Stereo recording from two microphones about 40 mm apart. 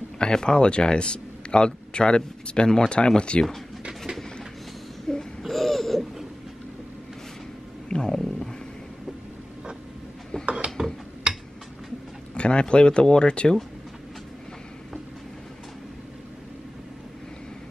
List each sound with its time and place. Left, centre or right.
0.2 s speech: centre
5.1 s a sound: centre
5.4 s laughter: centre
7.9 s stomach rumble: centre
10.5 s a sound: right
12.4 s speech: left